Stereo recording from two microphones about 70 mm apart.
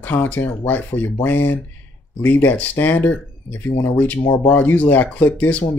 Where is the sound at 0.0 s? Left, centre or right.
Left.